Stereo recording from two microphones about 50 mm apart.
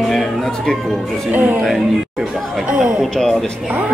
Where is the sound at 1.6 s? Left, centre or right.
Centre.